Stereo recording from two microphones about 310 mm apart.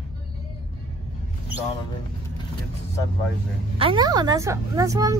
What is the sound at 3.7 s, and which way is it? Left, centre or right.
A woman's voice, centre.